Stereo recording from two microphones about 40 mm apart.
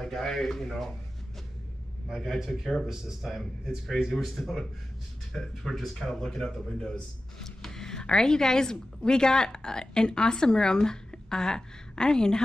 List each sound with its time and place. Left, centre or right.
0.0 s speech: centre
2.1 s speech: centre
5.3 s speech: centre